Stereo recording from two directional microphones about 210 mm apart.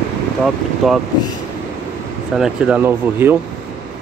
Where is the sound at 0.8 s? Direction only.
Centre (ahead or behind).